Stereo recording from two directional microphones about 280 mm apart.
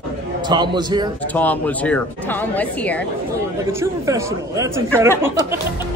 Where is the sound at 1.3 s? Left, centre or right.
Centre.